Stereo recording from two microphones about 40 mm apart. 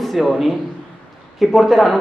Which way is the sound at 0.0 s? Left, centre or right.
Centre.